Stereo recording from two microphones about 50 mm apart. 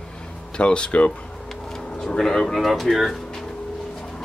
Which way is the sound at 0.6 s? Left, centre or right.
Left.